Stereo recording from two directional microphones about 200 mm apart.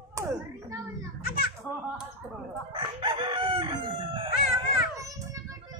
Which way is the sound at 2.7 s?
25° right (ahead or behind).